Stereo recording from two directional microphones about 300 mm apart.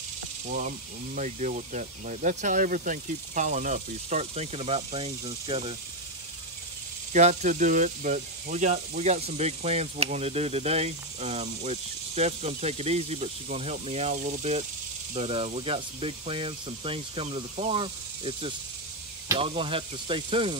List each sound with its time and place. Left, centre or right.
0.5 s speech: right
7.1 s speech: right